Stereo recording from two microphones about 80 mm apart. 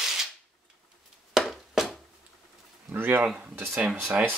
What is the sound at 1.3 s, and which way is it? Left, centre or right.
Chopping, centre.